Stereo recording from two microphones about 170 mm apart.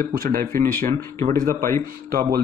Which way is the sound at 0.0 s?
55° right (ahead or behind).